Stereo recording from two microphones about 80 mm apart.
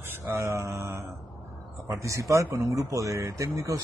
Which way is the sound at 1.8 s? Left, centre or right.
Right.